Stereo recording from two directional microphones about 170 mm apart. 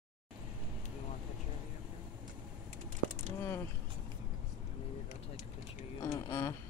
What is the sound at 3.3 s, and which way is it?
Vehicle, 15° left (ahead or behind).